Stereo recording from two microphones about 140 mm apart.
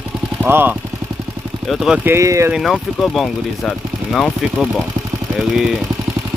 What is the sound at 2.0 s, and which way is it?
Speech, 20° right (ahead or behind).